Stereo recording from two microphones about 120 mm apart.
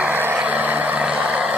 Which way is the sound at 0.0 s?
15° right (ahead or behind).